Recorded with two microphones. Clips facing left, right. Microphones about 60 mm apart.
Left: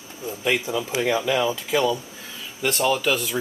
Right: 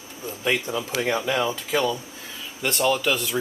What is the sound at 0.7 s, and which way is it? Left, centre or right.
Speech, centre.